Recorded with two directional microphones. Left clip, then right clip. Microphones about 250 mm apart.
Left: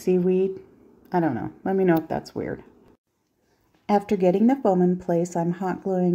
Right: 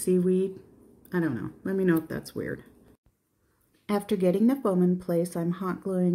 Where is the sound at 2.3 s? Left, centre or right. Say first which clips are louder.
Left 4 dB; left.